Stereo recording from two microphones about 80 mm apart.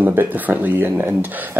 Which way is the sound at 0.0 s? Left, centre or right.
Right.